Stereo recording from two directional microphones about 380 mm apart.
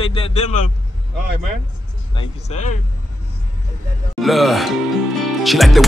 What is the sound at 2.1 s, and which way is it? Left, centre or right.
Speech, centre.